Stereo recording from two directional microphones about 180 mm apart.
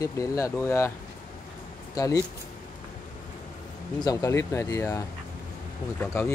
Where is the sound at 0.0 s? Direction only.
20° left (ahead or behind).